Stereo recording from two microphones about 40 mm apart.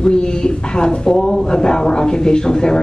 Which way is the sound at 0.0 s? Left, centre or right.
Left.